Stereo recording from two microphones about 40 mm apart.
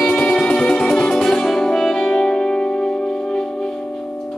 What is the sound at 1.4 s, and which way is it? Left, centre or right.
Music, centre.